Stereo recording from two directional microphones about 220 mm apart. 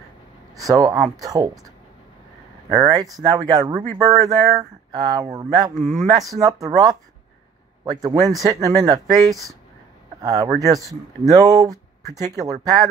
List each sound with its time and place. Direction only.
0.6 s speech: 15° right (ahead or behind)
2.7 s speech: 15° right (ahead or behind)
5.8 s speech: centre (ahead or behind)
6.4 s speech: 15° right (ahead or behind)